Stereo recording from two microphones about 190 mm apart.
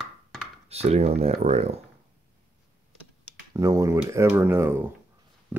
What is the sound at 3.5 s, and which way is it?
Speech, 15° right (ahead or behind).